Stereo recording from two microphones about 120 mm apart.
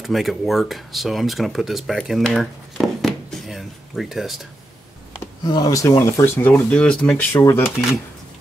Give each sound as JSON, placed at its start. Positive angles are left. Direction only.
{"t": 0.0, "sound": "speech", "side_deg": 0}
{"t": 5.4, "sound": "speech", "side_deg": 35}
{"t": 7.4, "sound": "speech", "side_deg": 20}